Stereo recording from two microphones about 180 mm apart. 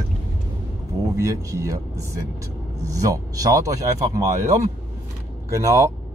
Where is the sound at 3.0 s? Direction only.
20° right (ahead or behind).